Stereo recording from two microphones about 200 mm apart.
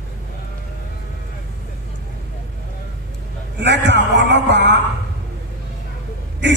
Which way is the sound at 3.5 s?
60° right (ahead or behind).